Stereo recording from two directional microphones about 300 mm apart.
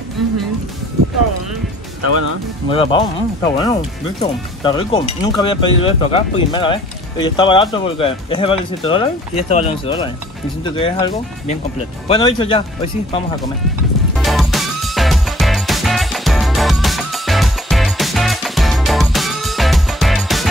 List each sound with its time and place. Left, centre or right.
2.0 s speech: right
2.7 s speech: centre
14.1 s music: centre